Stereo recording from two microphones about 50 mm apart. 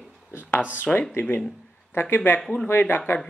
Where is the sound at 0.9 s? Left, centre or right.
Centre.